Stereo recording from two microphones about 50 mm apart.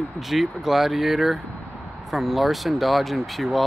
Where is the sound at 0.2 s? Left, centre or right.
Centre.